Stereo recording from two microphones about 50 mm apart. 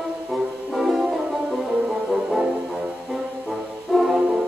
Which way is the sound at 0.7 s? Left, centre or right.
Centre.